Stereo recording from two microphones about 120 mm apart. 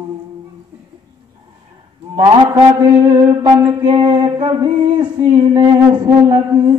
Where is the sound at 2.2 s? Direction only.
40° right (ahead or behind).